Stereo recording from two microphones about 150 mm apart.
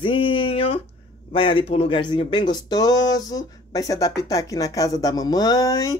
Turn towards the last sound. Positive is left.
turn(degrees=20)  # may be behind; listen again after turning